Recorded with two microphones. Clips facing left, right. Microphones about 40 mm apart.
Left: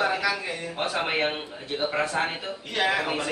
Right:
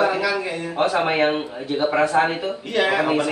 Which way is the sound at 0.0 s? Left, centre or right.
Centre.